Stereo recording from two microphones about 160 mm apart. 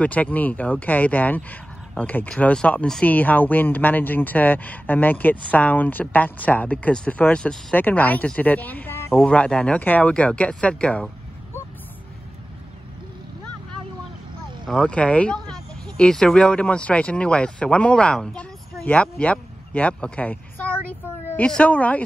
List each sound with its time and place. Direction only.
0.0 s speech: 10° left (ahead or behind)
14.7 s speech: 5° left (ahead or behind)